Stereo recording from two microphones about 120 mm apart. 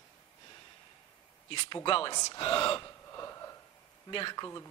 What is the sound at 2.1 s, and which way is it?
Speech, 30° left (ahead or behind).